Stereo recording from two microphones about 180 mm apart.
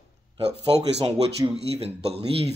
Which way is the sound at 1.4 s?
20° right (ahead or behind).